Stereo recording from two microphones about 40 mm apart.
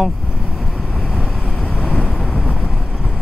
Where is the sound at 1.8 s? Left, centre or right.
Left.